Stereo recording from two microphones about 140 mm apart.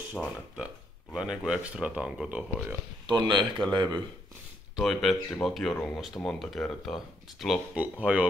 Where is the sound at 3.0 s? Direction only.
35° right (ahead or behind).